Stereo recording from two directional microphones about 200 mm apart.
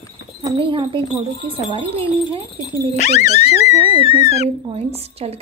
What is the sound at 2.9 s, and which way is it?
Speech, 35° left (ahead or behind).